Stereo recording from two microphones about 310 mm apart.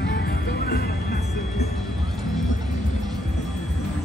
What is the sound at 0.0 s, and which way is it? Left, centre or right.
Music, left.